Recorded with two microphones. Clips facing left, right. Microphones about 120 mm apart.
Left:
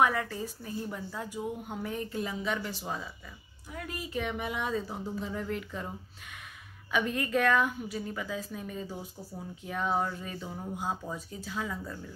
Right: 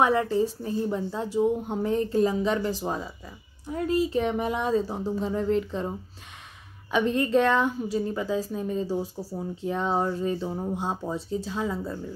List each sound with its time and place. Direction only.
0.0 s a woman's voice: 25° right (ahead or behind)